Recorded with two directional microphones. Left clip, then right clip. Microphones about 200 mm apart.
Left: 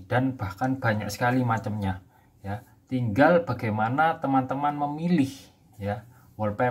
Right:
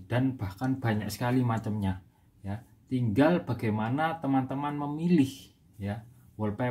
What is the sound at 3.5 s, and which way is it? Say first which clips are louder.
Speech: left 5 dB; centre (ahead or behind).